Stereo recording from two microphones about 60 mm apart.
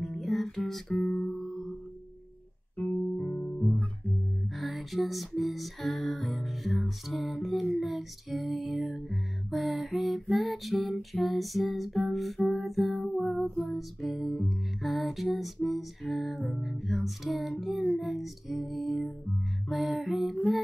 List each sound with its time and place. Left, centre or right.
0.0 s music: centre
2.8 s music: left
4.6 s music: centre